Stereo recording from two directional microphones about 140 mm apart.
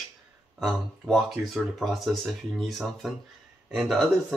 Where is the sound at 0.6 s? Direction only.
Centre (ahead or behind).